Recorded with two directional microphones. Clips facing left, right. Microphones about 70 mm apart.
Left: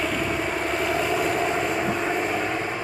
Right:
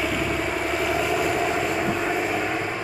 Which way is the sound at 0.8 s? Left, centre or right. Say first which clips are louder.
Even; centre.